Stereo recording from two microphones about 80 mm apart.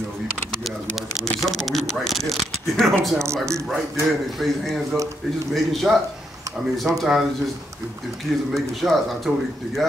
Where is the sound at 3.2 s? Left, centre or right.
Right.